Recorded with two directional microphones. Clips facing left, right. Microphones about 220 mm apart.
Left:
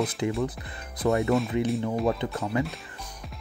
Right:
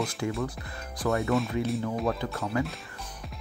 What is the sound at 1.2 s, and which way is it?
Speech, centre (ahead or behind).